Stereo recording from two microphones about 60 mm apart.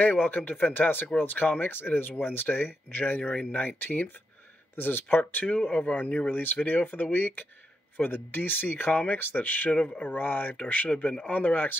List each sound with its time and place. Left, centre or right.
0.0 s speech: left